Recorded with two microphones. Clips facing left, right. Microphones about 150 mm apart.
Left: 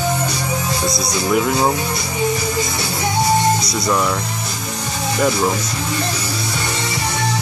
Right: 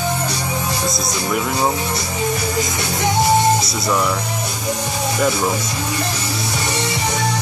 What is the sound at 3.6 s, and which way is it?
Speech, centre (ahead or behind).